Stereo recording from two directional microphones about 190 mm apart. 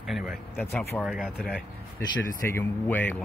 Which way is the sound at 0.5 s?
10° left (ahead or behind).